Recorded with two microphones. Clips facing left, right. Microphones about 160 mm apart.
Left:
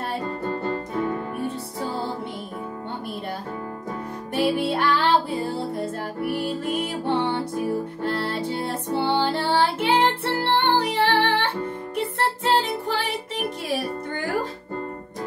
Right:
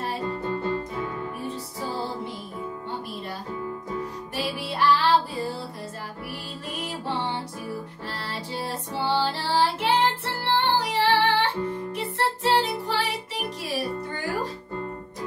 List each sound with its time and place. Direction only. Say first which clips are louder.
0.5 s music: left 1 dB; 45° left (ahead or behind)
4.4 s music: left 6 dB; 55° left (ahead or behind)
12.4 s music: left 1 dB; 50° left (ahead or behind)